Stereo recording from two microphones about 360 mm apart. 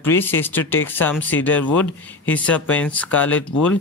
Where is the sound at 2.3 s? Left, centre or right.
Centre.